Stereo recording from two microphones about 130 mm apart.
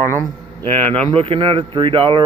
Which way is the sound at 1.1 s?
45° right (ahead or behind).